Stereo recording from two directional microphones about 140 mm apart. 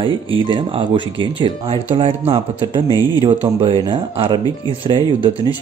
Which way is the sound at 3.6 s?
35° right (ahead or behind).